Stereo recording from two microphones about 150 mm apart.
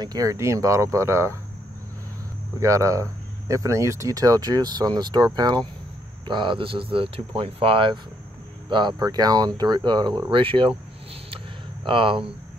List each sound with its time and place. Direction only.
0.0 s speech: 25° right (ahead or behind)
2.6 s speech: 20° right (ahead or behind); by 10.8 s 35° right (ahead or behind)
11.8 s speech: 35° right (ahead or behind)